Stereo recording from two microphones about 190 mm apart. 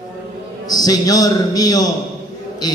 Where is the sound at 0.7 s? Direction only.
20° left (ahead or behind).